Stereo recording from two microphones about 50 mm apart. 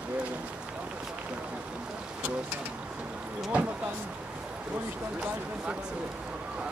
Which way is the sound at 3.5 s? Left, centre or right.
Right.